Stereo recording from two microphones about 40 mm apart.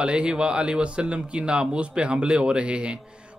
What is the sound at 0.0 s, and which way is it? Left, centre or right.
Speech, right.